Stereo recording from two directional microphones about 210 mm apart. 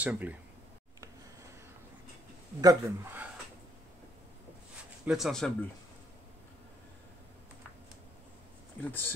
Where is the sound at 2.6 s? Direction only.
10° right (ahead or behind).